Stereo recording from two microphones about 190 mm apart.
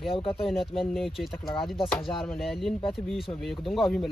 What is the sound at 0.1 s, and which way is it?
Speech, 30° left (ahead or behind).